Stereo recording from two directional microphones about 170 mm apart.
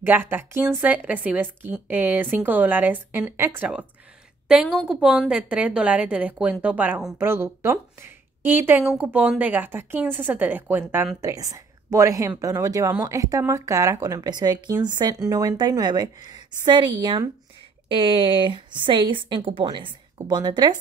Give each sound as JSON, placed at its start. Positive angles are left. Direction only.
{"t": 0.0, "sound": "a woman's voice", "side_deg": -10}